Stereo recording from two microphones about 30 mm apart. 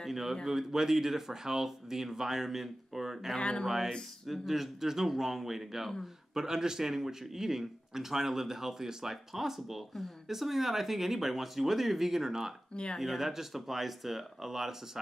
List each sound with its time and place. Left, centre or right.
0.1 s speech: centre
3.3 s speech: left
3.6 s speech: centre